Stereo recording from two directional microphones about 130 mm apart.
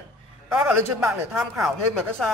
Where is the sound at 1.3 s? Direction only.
Centre (ahead or behind).